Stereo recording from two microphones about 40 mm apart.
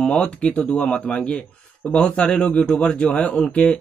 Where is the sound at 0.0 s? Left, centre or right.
Left.